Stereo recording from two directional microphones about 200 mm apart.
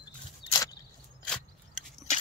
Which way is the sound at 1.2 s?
5° left (ahead or behind).